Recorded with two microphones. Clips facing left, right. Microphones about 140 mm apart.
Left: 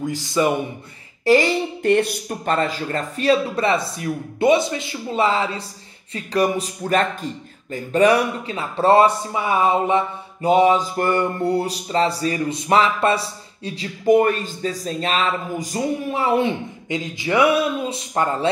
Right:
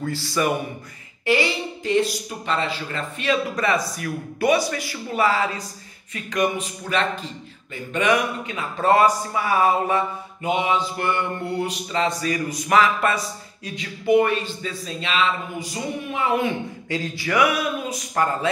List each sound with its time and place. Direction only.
0.0 s speech: 15° left (ahead or behind)
1.2 s speech: 40° left (ahead or behind)
1.8 s speech: 60° left (ahead or behind); by 5.6 s 25° left (ahead or behind)
6.1 s a sound: 35° left (ahead or behind)
7.7 s speech: 35° left (ahead or behind)
10.4 s a sound: 40° left (ahead or behind)
16.9 s speech: 20° left (ahead or behind)